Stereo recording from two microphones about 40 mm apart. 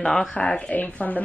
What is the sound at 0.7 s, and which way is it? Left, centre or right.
Speech, left.